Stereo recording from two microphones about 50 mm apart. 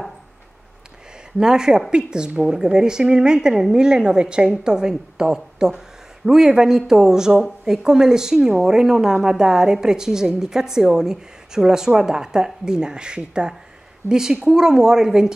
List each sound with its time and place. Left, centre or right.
1.4 s a woman's voice: centre